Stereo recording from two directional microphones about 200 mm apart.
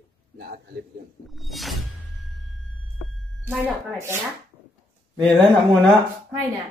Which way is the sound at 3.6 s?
10° right (ahead or behind).